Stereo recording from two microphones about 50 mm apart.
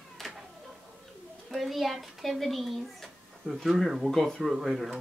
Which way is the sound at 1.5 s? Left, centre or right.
Centre.